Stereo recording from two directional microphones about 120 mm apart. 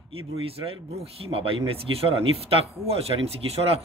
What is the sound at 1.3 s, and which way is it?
Speech, 50° right (ahead or behind).